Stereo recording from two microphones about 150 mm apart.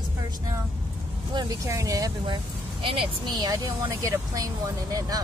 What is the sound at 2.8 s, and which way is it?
Speech, 35° right (ahead or behind).